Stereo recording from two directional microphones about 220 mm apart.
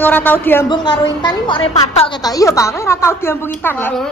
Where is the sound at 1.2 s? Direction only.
20° left (ahead or behind).